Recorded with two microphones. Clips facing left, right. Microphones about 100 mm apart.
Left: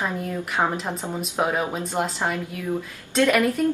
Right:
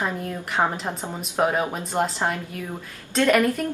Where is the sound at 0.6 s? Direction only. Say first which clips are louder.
Right 1 dB; 15° right (ahead or behind).